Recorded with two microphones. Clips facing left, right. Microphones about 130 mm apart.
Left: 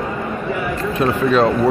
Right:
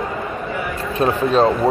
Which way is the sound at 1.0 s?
35° right (ahead or behind).